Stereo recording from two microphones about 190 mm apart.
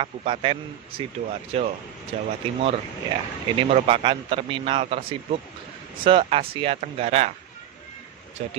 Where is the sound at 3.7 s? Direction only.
30° right (ahead or behind).